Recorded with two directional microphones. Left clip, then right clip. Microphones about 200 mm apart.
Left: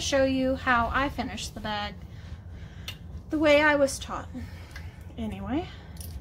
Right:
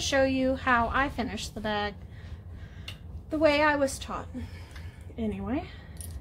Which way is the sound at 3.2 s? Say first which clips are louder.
Left 2 dB; 25° right (ahead or behind).